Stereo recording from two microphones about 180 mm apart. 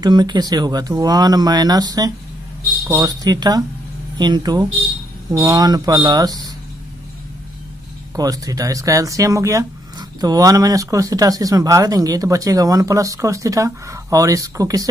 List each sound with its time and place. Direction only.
0.0 s speech: 25° right (ahead or behind)
8.2 s speech: 20° right (ahead or behind)